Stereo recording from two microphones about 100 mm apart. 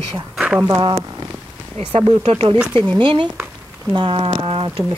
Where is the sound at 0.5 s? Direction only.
30° right (ahead or behind).